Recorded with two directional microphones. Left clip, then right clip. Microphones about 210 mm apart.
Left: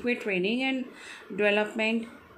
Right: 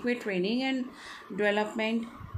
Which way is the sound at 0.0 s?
15° right (ahead or behind).